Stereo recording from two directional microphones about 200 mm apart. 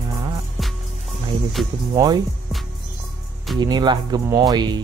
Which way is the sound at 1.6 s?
Centre (ahead or behind).